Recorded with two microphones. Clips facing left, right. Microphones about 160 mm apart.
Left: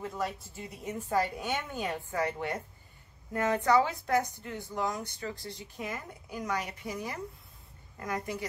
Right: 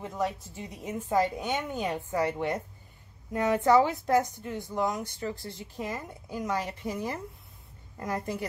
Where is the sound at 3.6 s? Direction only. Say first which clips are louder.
Right 5 dB; 25° right (ahead or behind).